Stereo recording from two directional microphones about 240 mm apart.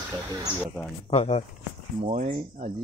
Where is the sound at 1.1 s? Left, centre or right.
Left.